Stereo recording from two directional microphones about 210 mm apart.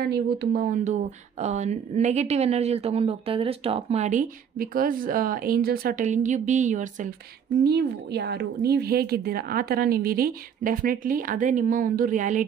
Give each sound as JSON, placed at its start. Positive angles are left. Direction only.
{"t": 0.1, "sound": "a woman's voice", "side_deg": -50}
{"t": 7.6, "sound": "a woman's voice", "side_deg": -50}